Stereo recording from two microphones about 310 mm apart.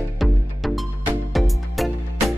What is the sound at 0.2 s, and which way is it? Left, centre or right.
Music, centre.